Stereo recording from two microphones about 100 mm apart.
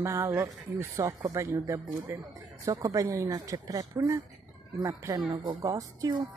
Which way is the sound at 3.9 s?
25° right (ahead or behind).